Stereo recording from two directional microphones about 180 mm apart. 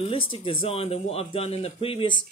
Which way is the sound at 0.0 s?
30° left (ahead or behind).